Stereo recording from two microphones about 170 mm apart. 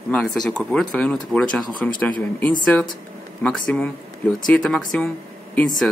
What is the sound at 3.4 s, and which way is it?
Speech, 5° left (ahead or behind).